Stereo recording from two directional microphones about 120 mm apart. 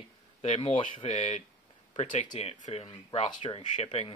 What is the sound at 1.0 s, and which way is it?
Speech, 70° left (ahead or behind).